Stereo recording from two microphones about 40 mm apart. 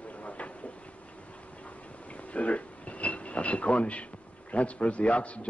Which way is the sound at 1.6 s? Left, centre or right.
Left.